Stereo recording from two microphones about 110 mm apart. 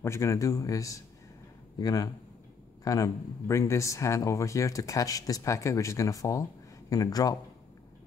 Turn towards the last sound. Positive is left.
turn(degrees=35)  # may be behind; listen again after turning